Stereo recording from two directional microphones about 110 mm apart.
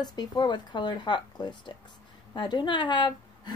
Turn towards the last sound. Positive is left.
turn(degrees=45)  # may be behind; listen again after turning